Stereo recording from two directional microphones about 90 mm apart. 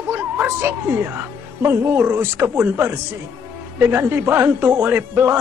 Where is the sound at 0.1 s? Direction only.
20° right (ahead or behind).